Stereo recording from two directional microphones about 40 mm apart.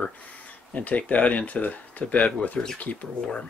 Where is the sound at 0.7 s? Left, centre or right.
Left.